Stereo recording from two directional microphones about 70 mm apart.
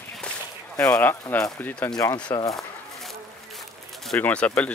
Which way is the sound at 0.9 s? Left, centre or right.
Left.